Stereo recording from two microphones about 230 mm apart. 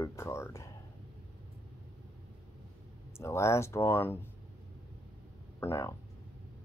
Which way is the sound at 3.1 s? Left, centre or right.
Centre.